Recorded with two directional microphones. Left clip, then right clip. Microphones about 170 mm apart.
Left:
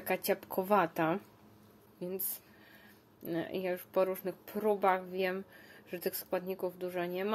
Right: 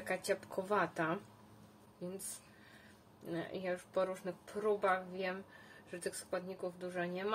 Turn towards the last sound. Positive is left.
turn(degrees=50)  # may be behind; listen again after turning